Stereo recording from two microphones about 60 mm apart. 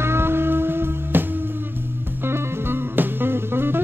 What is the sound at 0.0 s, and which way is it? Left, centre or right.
Music, right.